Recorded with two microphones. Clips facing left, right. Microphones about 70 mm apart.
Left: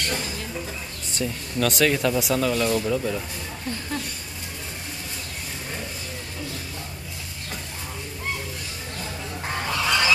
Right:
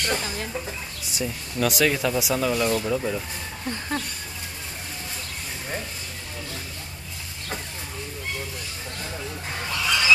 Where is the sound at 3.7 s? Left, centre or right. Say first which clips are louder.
Right 2 dB; right.